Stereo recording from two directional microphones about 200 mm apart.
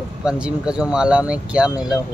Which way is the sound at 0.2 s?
5° right (ahead or behind).